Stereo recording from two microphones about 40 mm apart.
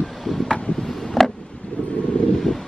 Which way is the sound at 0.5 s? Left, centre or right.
Left.